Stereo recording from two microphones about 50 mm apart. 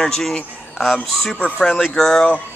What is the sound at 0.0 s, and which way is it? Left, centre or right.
A man's voice, centre.